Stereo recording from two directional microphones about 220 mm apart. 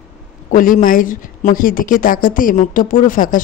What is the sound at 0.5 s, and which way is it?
Speech, 40° left (ahead or behind).